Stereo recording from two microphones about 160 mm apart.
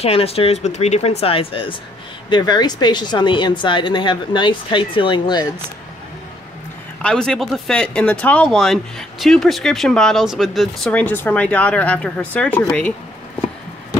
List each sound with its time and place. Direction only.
0.0 s speech: 40° left (ahead or behind)
7.0 s speech: 5° left (ahead or behind)
10.9 s speech: 10° left (ahead or behind)